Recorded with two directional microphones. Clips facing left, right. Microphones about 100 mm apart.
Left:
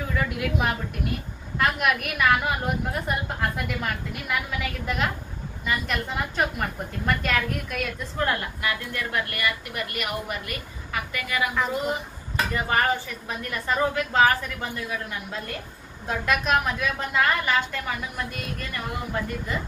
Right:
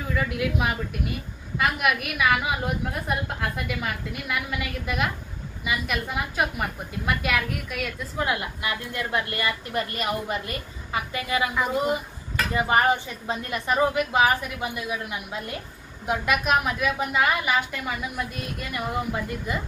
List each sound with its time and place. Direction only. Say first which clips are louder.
0.1 s a woman's voice: right 2 dB; centre (ahead or behind)
8.6 s a woman's voice: left 1 dB; 20° right (ahead or behind)
11.7 s a woman's voice: right 3 dB; 15° right (ahead or behind)